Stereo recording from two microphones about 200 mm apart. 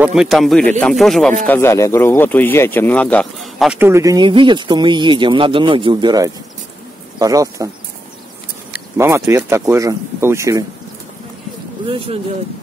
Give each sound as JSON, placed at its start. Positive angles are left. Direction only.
{"t": 0.0, "sound": "speech", "side_deg": -5}
{"t": 8.9, "sound": "speech", "side_deg": -15}